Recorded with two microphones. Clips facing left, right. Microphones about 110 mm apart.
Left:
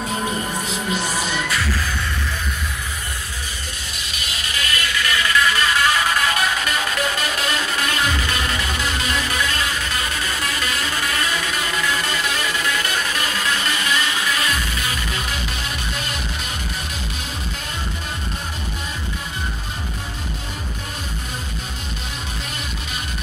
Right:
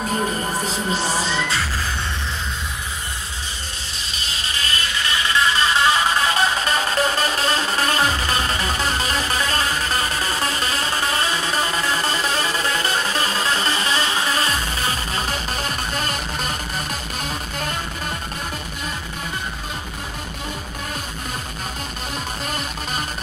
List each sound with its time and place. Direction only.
0.7 s music: 35° right (ahead or behind)
4.1 s music: 30° right (ahead or behind)